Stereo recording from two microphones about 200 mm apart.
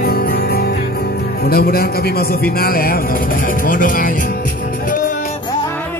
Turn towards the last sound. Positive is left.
turn(degrees=45)  # may be behind; listen again after turning